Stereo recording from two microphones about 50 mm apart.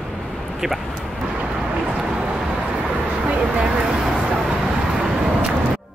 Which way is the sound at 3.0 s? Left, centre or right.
Right.